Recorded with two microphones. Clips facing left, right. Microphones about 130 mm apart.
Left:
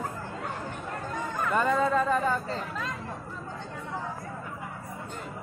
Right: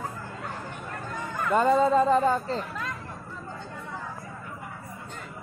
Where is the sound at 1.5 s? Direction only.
30° right (ahead or behind).